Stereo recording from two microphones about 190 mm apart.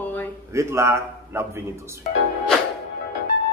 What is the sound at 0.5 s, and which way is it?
A man's voice, 15° right (ahead or behind).